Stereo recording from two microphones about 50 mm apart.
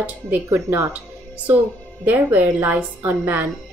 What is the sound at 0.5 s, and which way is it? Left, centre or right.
Speech, right.